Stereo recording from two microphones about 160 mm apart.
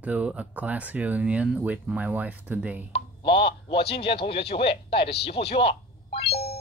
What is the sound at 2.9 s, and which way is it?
Speech, 35° left (ahead or behind).